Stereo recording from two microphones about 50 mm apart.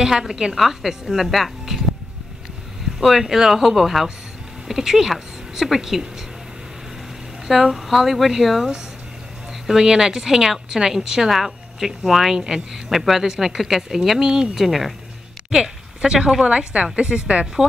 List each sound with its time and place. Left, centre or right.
0.0 s a woman's voice: centre
3.0 s a woman's voice: centre
7.4 s a woman's voice: centre
15.5 s a woman's voice: centre